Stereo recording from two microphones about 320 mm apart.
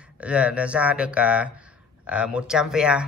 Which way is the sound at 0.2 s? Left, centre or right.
Centre.